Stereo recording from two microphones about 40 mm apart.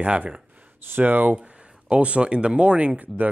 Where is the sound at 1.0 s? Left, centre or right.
Right.